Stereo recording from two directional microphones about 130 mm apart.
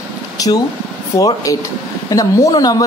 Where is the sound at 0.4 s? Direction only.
30° left (ahead or behind).